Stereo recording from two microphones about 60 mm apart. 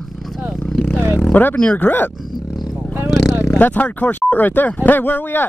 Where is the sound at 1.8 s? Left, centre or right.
Left.